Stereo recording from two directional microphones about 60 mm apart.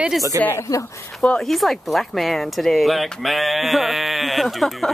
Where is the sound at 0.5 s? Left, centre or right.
Left.